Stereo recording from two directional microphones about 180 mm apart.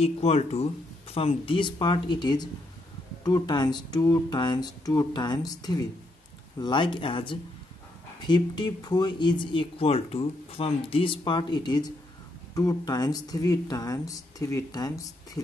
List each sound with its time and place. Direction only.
0.0 s speech: 35° left (ahead or behind); by 15.0 s 20° left (ahead or behind)